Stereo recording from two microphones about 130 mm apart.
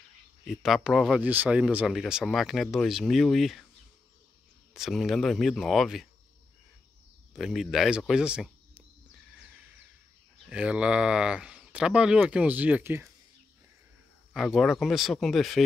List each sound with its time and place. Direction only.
0.5 s speech: centre (ahead or behind)
1.2 s speech: 15° right (ahead or behind)
4.7 s speech: centre (ahead or behind)
7.3 s speech: centre (ahead or behind)
10.4 s speech: 10° right (ahead or behind)
14.3 s speech: centre (ahead or behind)